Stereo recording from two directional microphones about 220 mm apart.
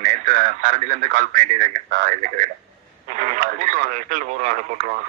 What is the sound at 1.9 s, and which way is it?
Speech, 40° right (ahead or behind).